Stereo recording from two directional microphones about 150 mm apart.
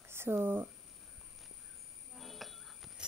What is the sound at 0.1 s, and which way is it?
Speech, 15° right (ahead or behind).